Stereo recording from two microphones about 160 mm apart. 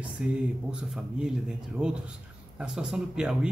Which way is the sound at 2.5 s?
5° right (ahead or behind).